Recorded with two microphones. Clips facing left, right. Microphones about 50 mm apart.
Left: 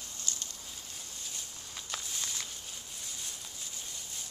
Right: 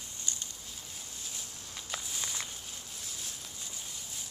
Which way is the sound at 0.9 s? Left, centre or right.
Centre.